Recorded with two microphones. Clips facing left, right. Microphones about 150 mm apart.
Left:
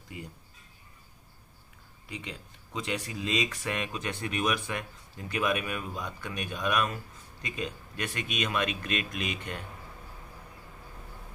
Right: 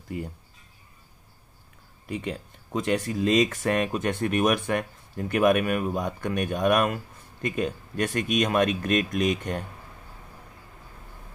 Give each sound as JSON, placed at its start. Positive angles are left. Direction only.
{"t": 0.1, "sound": "speech", "side_deg": -55}
{"t": 2.0, "sound": "speech", "side_deg": -50}